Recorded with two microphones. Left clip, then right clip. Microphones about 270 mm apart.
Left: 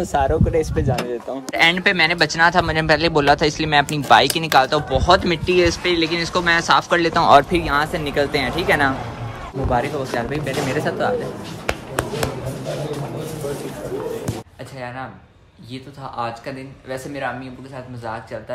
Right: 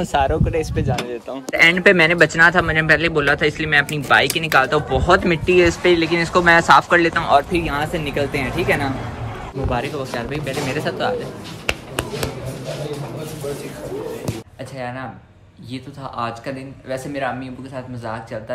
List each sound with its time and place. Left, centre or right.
0.0 s a man's voice: centre
15.7 s speech: centre